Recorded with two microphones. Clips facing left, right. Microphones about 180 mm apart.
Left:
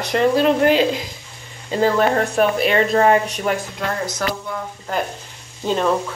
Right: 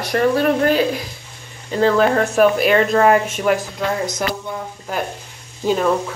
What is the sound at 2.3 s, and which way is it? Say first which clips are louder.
Speech: right 3 dB; 30° left (ahead or behind).